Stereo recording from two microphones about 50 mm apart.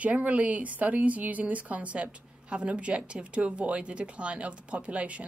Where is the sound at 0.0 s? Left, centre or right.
Right.